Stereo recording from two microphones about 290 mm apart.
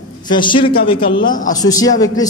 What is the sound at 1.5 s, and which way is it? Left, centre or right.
Speech, centre.